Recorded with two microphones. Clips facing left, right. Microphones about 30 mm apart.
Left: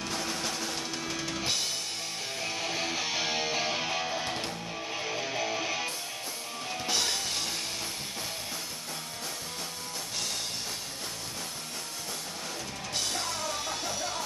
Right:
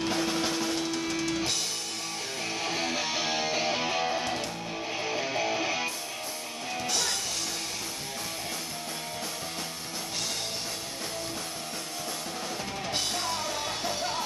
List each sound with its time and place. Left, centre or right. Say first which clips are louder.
0.0 s music: right 5 dB; right
1.0 s music: right 4 dB; centre
2.4 s music: right 2 dB; centre